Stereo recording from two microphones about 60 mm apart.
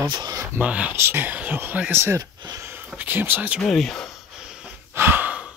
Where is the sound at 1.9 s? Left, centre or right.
Right.